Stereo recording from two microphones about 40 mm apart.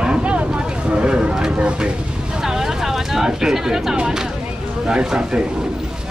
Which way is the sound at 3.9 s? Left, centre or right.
Centre.